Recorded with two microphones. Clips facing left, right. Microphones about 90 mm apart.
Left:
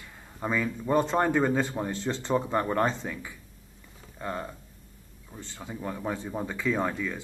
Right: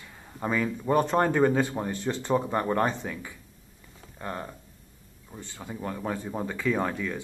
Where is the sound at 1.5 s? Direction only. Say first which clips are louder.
Right 1 dB; 10° right (ahead or behind).